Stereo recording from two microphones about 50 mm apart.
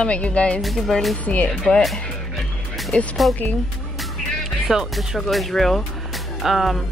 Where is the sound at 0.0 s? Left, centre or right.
Left.